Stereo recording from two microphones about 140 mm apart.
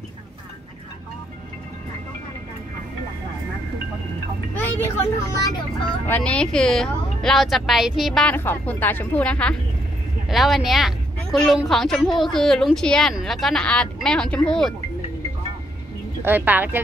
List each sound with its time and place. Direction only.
4.6 s vehicle: 15° left (ahead or behind)
5.2 s speech: 20° left (ahead or behind)
6.0 s a woman's voice: 10° left (ahead or behind)
16.2 s a woman's voice: 15° right (ahead or behind)